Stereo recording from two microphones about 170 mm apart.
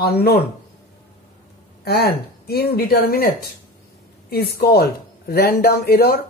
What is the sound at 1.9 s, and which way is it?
Speech, 65° left (ahead or behind).